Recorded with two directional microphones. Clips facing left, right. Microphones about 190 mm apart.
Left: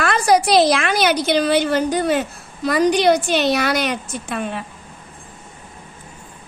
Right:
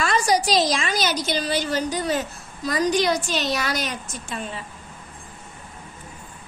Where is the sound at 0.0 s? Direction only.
60° left (ahead or behind).